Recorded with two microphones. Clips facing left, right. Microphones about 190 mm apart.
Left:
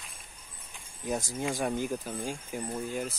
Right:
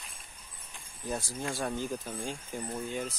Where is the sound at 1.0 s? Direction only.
15° left (ahead or behind).